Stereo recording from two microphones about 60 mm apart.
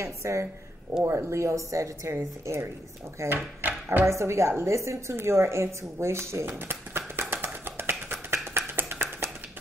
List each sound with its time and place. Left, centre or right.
0.0 s speech: right
3.3 s drawer open or close: right
4.0 s a sound: right